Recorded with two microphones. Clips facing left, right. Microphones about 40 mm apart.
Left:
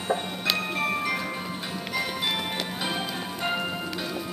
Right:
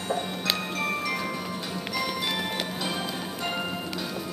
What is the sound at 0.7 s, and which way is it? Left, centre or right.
Music, centre.